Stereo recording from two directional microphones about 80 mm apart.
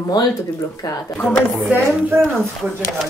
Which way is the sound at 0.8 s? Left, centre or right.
Left.